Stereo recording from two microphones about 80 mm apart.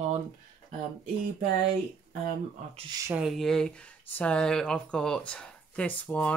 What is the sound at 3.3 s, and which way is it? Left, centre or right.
Speech, centre.